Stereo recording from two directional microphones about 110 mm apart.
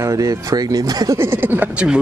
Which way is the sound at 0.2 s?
35° right (ahead or behind).